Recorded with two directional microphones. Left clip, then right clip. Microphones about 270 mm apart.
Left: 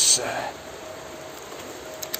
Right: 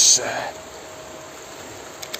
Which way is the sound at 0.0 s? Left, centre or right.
Centre.